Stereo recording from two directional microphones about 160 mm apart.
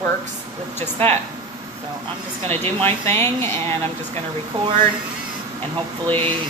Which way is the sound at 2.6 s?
15° left (ahead or behind).